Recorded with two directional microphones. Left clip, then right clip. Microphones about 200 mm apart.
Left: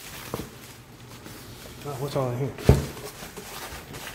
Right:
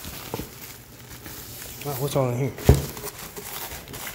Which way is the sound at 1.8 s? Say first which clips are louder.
Right 3 dB; 30° right (ahead or behind).